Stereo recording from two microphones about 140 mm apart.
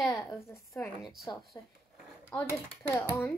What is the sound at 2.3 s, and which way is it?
Child singing, 15° left (ahead or behind).